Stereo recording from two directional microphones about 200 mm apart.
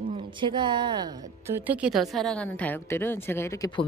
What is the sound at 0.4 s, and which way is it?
A woman's voice, 25° right (ahead or behind).